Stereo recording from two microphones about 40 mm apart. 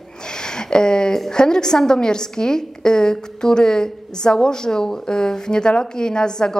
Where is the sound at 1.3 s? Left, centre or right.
Centre.